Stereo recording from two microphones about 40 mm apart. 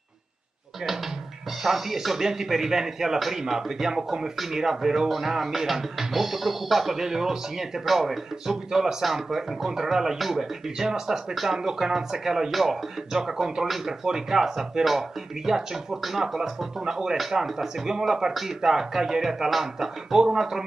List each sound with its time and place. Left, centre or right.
1.6 s speech: centre